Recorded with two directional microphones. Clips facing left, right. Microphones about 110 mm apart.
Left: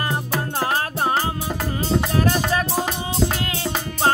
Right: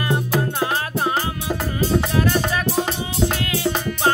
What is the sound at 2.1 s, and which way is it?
Music, 35° left (ahead or behind).